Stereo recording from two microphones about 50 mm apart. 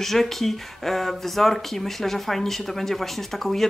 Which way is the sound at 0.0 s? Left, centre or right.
Centre.